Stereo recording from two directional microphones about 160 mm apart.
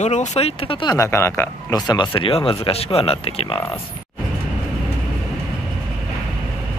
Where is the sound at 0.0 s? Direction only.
45° left (ahead or behind).